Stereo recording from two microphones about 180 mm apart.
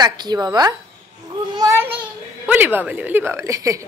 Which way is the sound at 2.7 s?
10° right (ahead or behind).